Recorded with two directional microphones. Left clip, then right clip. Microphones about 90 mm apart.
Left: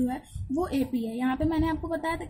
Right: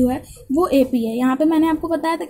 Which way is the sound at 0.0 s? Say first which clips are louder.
Right 11 dB; 30° right (ahead or behind).